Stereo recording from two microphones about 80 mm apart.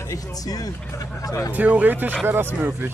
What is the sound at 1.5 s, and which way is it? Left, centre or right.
Speech, centre.